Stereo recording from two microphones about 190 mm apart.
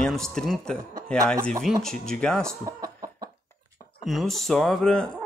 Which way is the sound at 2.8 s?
20° right (ahead or behind).